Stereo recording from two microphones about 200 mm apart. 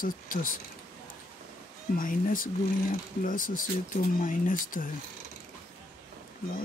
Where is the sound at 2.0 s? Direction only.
45° left (ahead or behind).